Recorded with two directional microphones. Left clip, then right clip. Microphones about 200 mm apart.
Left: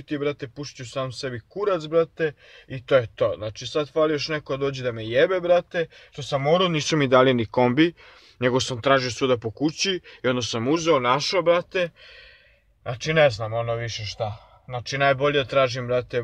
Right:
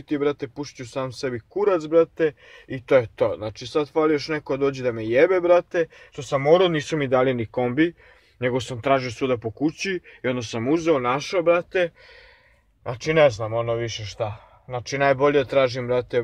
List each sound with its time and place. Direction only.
0.2 s speech: 5° left (ahead or behind)
6.7 s speech: 30° left (ahead or behind); by 11.9 s 10° left (ahead or behind)
13.5 s speech: 5° left (ahead or behind)